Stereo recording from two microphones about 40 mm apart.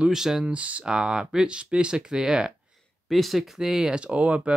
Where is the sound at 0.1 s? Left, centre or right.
Centre.